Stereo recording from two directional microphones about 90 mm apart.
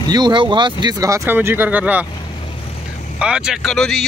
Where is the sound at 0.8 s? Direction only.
40° right (ahead or behind).